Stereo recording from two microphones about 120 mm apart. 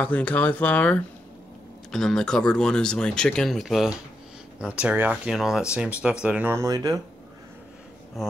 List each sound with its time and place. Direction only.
0.0 s speech: 10° left (ahead or behind); by 6.6 s 15° right (ahead or behind)
6.6 s speech: 30° right (ahead or behind)
8.2 s speech: centre (ahead or behind)